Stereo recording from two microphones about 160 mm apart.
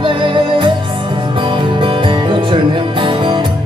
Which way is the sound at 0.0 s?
30° right (ahead or behind).